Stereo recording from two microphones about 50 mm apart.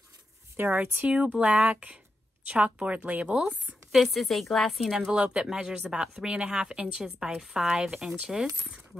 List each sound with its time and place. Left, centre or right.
0.6 s a woman's voice: right
1.0 s speech: right
3.9 s speech: centre
4.9 s speech: centre